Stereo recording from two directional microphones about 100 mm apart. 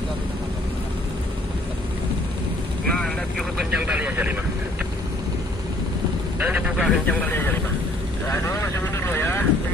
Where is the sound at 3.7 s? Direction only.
15° right (ahead or behind).